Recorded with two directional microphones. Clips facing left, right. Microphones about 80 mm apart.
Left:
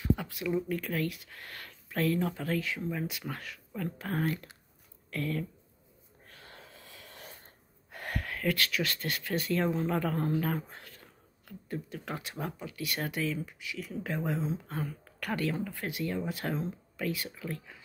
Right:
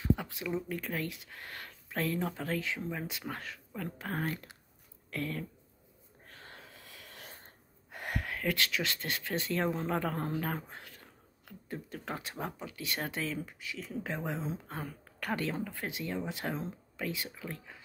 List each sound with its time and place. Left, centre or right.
0.0 s speech: right
3.7 s speech: centre
6.2 s snort: right
7.9 s speech: centre
12.0 s speech: right
14.4 s speech: right